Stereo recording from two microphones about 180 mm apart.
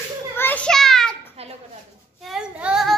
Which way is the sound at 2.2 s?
5° right (ahead or behind).